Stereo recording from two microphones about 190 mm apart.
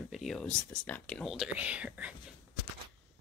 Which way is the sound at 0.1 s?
Centre (ahead or behind).